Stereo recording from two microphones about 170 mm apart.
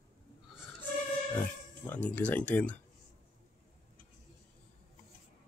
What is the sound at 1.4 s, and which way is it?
Speech, 10° left (ahead or behind).